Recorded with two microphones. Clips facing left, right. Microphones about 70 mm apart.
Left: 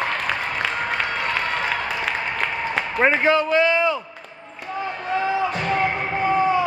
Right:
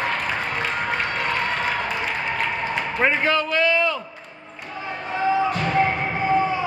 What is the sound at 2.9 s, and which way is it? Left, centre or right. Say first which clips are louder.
A man's voice: left 3 dB; centre.